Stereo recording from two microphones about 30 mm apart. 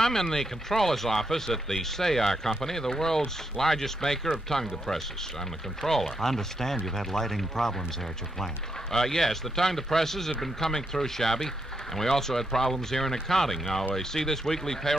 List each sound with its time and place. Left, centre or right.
0.0 s a man's voice: centre
8.9 s a man's voice: centre